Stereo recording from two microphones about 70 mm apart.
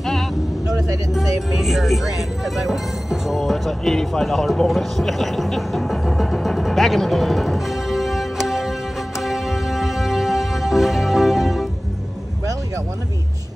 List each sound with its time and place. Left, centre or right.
0.0 s vehicle: centre
1.1 s speech: centre
9.2 s music: centre